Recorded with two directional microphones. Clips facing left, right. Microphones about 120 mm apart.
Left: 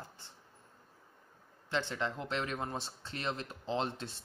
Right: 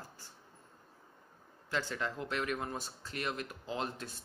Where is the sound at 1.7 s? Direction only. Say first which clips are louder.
Left 1 dB; 25° left (ahead or behind).